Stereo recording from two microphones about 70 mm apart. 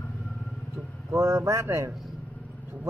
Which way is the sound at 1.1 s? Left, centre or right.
Right.